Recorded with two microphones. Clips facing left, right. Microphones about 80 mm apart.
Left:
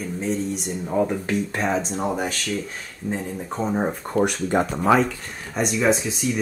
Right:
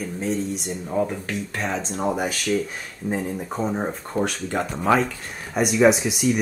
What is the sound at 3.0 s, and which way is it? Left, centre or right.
Speech, centre.